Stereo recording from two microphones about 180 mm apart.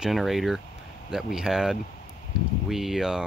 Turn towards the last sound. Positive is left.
turn(degrees=-5)  # may be behind; listen again after turning